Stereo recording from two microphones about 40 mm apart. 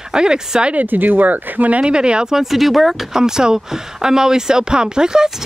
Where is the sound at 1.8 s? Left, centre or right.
Right.